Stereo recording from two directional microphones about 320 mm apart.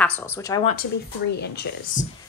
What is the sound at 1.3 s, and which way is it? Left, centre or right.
Speech, left.